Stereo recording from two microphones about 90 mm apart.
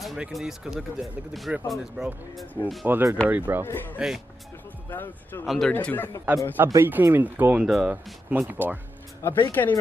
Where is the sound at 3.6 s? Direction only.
25° left (ahead or behind).